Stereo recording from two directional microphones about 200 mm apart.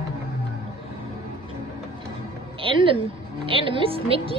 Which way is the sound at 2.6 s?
25° right (ahead or behind).